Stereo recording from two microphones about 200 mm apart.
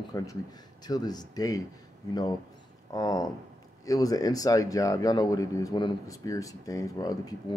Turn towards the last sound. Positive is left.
turn(degrees=20)  # may be behind; listen again after turning